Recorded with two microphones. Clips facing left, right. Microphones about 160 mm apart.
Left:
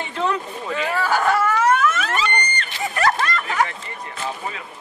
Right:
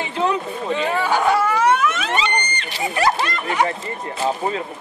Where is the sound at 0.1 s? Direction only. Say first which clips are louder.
Right 2 dB; 25° right (ahead or behind).